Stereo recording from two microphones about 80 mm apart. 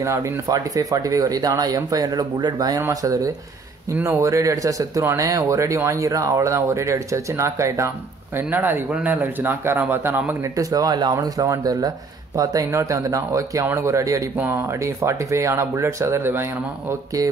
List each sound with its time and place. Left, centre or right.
0.5 s speech: right
3.9 s speech: right
8.4 s a man's voice: right
10.6 s speech: right